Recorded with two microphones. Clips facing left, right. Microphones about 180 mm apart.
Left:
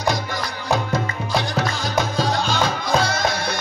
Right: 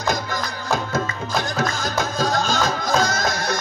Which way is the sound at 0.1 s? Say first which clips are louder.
Right 1 dB; 45° right (ahead or behind).